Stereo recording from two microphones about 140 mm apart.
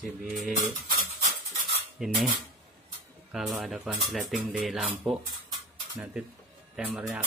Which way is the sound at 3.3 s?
Centre (ahead or behind).